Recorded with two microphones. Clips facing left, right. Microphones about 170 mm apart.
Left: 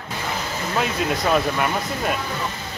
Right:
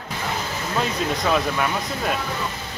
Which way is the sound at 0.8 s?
5° left (ahead or behind).